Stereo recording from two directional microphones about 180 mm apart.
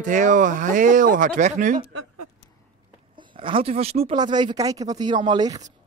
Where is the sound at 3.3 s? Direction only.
30° right (ahead or behind).